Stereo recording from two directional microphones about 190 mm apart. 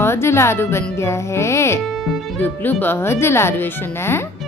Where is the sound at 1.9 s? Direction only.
Centre (ahead or behind).